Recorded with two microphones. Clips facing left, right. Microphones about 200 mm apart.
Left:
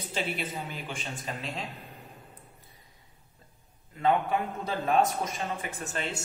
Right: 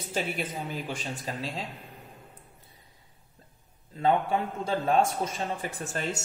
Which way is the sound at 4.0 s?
30° right (ahead or behind).